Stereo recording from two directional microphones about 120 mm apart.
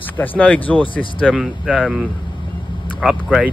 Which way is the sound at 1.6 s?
5° right (ahead or behind).